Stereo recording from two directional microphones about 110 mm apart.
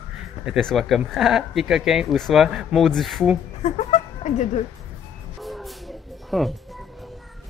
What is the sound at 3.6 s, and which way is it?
Speech, 90° left.